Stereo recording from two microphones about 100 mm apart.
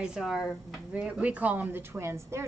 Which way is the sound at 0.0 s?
5° right (ahead or behind).